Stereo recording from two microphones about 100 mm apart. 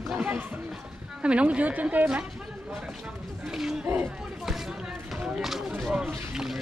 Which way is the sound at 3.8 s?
20° right (ahead or behind).